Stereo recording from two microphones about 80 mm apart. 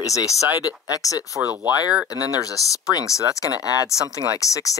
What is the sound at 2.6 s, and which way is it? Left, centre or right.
Speech, left.